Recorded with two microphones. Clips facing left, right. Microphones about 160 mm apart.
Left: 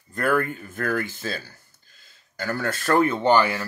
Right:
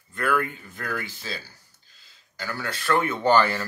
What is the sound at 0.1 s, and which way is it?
Speech, 45° left (ahead or behind).